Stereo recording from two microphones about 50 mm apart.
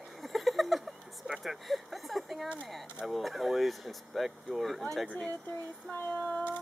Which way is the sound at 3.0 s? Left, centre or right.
Centre.